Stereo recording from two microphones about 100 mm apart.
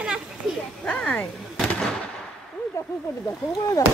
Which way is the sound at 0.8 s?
15° left (ahead or behind).